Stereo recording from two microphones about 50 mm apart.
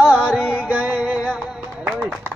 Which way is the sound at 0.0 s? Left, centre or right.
Right.